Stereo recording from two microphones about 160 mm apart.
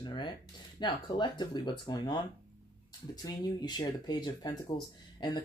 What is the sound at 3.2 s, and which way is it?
Speech, 25° left (ahead or behind).